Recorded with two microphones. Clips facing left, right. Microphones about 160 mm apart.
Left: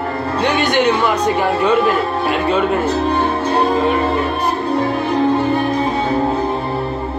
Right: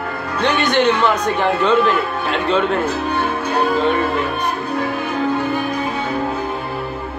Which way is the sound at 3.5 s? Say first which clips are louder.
Left 2 dB; 30° left (ahead or behind).